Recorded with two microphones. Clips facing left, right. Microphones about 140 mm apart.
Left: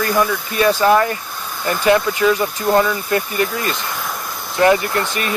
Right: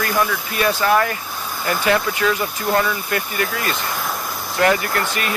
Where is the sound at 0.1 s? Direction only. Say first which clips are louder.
Left 3 dB; centre (ahead or behind).